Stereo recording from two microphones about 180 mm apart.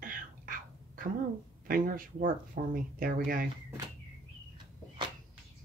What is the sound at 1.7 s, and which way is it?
Speech, 50° right (ahead or behind).